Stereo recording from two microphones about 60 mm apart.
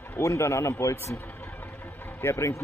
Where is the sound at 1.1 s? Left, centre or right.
Left.